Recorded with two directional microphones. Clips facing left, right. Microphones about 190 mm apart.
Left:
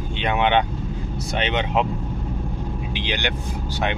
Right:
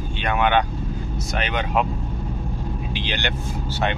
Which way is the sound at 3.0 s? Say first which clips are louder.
Left 2 dB; 15° left (ahead or behind).